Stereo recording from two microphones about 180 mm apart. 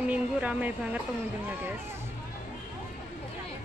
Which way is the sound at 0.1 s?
10° right (ahead or behind).